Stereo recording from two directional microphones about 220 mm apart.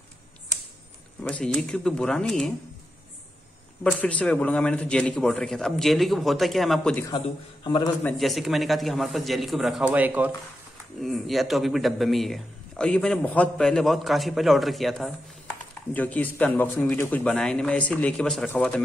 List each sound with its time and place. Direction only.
1.2 s a man's voice: 5° left (ahead or behind)
3.8 s a man's voice: 5° left (ahead or behind)
7.1 s a man's voice: 20° left (ahead or behind)
8.0 s a man's voice: centre (ahead or behind)